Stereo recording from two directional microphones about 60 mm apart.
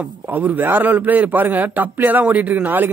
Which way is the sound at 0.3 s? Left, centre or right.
Right.